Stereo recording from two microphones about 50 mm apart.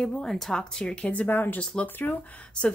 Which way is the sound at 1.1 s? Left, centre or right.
Left.